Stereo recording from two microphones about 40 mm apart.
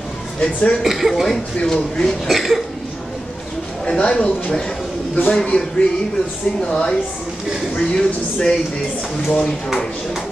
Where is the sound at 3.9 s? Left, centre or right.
Left.